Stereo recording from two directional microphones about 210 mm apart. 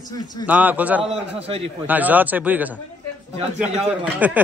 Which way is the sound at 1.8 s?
10° right (ahead or behind).